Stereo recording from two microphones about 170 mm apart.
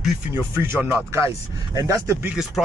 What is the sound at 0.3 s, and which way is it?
Speech, 15° right (ahead or behind).